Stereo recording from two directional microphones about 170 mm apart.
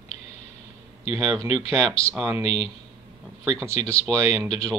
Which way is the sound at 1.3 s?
15° right (ahead or behind).